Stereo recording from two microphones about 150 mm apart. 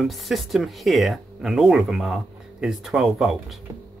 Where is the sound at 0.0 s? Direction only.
Centre (ahead or behind).